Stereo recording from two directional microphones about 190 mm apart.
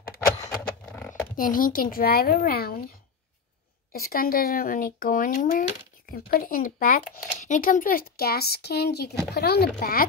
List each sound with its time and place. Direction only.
0.4 s a sound: 20° left (ahead or behind)
1.3 s speech: 45° left (ahead or behind)
3.9 s speech: 50° left (ahead or behind)